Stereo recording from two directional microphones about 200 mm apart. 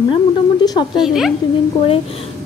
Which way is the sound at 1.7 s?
25° left (ahead or behind).